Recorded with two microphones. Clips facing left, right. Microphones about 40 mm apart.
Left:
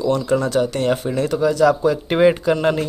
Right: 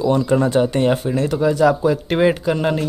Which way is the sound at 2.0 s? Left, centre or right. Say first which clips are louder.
Left 4 dB; centre.